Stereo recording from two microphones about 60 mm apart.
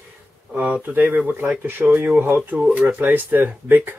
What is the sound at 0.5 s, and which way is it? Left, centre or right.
Speech, right.